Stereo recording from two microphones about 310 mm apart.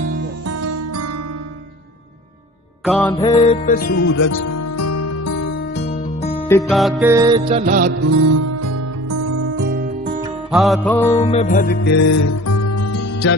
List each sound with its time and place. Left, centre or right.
0.5 s music: right
2.8 s music: centre
3.2 s music: centre
4.2 s music: left
6.4 s music: centre; by 7.9 s right
8.1 s music: right
9.6 s music: right
10.5 s music: centre
11.1 s music: left
12.1 s music: left